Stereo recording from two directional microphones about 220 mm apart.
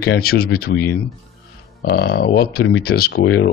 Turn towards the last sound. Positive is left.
turn(degrees=50)  # may be behind; listen again after turning